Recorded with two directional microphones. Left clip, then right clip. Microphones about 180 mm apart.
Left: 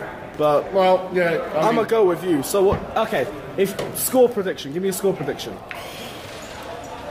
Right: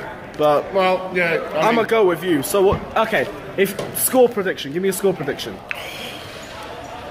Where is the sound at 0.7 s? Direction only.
20° left (ahead or behind).